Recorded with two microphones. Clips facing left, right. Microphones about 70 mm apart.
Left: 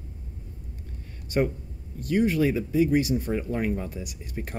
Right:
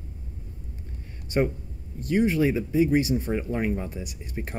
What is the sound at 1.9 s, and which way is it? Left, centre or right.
Speech, right.